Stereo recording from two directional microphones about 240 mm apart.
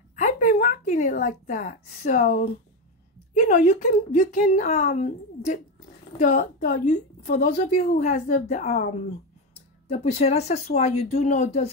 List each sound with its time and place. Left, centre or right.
0.1 s a woman's voice: left
7.9 s speech: left